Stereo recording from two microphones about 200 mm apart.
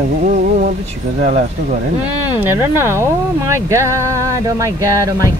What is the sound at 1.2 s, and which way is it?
Speech, 40° right (ahead or behind).